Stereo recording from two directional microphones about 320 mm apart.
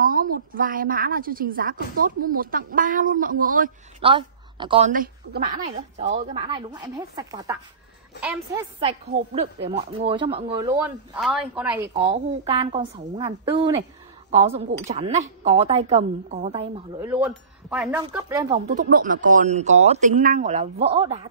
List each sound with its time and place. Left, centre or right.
0.0 s a woman's voice: right; by 8.6 s centre
8.7 s speech: centre
12.0 s a woman's voice: centre
17.1 s a woman's voice: centre